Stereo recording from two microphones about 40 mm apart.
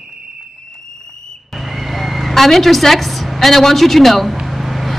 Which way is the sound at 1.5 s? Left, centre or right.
Centre.